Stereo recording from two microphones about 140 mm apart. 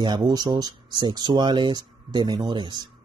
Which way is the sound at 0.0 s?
30° right (ahead or behind).